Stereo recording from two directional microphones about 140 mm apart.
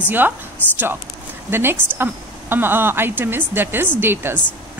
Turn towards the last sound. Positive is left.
turn(degrees=-15)  # may be behind; listen again after turning